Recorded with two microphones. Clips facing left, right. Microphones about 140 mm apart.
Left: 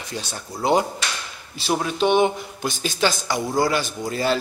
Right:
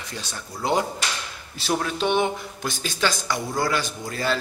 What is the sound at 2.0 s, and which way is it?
Speech, 25° left (ahead or behind).